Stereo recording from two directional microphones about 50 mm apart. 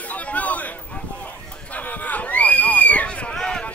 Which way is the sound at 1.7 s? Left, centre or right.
Left.